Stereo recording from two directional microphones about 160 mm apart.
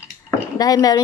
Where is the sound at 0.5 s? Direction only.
25° left (ahead or behind).